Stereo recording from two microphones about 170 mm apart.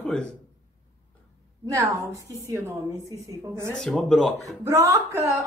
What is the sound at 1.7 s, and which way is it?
A woman's voice, 20° right (ahead or behind).